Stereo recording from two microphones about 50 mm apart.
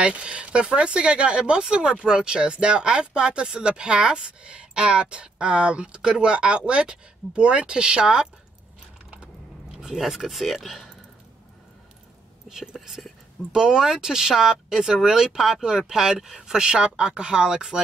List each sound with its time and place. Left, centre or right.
0.0 s speech: right
9.8 s speech: centre
12.4 s speech: centre